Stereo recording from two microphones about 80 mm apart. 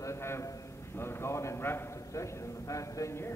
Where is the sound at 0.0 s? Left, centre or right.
Left.